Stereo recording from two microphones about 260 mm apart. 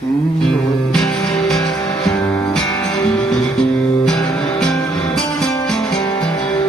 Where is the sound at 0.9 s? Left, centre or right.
Centre.